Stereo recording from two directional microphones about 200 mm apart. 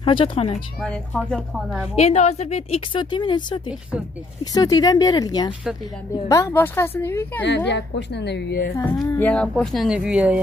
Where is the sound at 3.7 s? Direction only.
5° right (ahead or behind).